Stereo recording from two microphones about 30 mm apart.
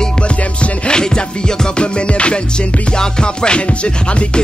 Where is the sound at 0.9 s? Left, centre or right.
Left.